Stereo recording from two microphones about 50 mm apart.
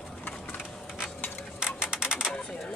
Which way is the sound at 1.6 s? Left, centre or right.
Centre.